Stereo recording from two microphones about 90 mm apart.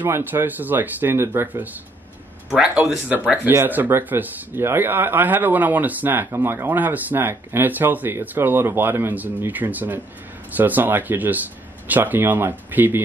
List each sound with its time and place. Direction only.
0.0 s speech: 25° right (ahead or behind)